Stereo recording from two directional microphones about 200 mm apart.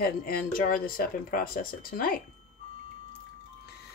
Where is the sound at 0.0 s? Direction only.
45° left (ahead or behind).